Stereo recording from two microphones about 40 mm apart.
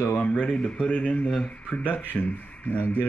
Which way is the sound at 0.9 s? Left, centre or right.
Left.